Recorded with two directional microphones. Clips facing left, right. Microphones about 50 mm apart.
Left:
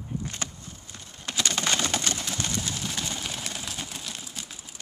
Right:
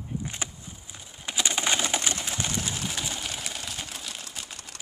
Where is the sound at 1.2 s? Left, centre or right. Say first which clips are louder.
Even; centre.